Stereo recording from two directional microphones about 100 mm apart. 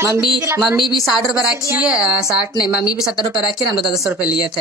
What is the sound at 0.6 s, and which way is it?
A woman's voice, centre (ahead or behind).